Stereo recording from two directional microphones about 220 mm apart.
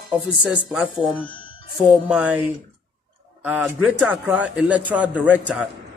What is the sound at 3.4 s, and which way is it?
A man's voice, 5° right (ahead or behind).